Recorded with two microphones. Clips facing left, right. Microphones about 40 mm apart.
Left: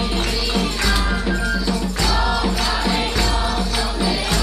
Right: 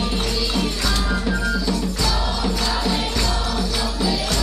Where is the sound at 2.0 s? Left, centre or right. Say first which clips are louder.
Left 3 dB; left.